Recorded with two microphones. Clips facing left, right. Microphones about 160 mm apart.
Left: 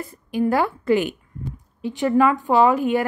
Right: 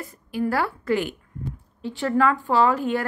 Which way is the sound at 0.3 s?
20° left (ahead or behind).